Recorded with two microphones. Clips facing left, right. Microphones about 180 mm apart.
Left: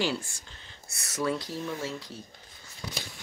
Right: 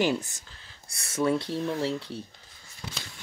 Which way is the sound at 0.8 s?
30° right (ahead or behind).